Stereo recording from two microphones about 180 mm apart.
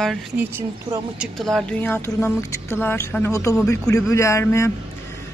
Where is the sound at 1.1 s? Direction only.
Centre (ahead or behind); by 5.2 s 15° left (ahead or behind).